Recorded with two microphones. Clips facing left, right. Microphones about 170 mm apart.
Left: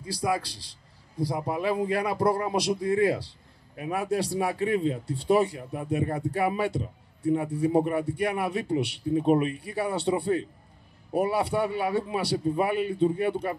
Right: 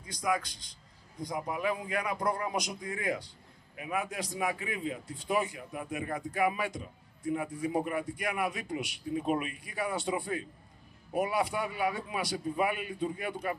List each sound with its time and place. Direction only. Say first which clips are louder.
0.0 s speech: left 4 dB; 30° left (ahead or behind)